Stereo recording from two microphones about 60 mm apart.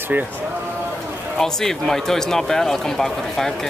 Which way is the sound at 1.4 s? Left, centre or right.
Centre.